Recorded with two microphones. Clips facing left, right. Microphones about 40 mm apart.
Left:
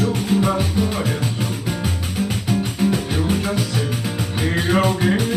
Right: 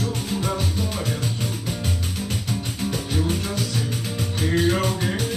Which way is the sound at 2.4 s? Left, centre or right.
Left.